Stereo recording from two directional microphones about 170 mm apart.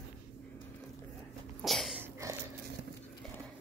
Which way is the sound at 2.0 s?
15° right (ahead or behind).